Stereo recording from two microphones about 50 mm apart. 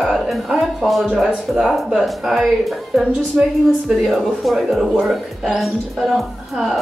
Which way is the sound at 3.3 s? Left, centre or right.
Centre.